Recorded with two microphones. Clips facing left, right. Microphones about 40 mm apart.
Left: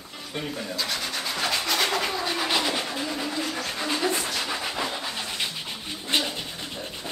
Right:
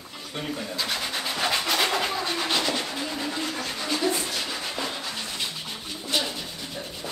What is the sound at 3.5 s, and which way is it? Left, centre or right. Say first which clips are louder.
Dog: left 1 dB; centre.